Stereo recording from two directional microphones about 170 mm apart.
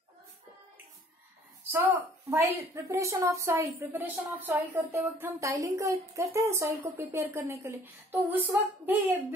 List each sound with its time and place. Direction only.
1.7 s speech: 15° right (ahead or behind)